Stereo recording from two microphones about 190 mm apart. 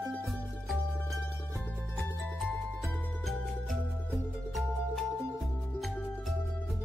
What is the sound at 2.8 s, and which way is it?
Music, centre (ahead or behind).